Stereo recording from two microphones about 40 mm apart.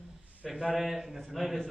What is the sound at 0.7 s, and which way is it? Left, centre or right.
Speech, centre.